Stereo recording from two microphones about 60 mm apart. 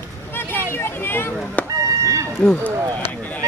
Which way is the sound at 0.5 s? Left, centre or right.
Left.